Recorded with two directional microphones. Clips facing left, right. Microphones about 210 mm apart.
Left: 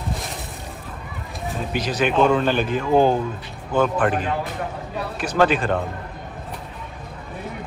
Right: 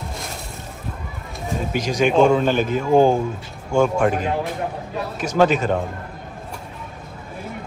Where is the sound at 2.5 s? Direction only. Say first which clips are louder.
Right 2 dB; 45° right (ahead or behind).